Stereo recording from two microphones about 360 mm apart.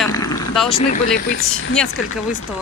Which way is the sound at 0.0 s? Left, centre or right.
Centre.